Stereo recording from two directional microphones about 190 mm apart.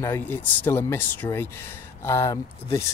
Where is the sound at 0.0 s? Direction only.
10° left (ahead or behind).